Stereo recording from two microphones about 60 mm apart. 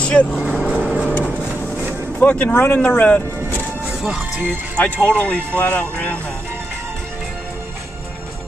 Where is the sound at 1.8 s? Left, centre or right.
Right.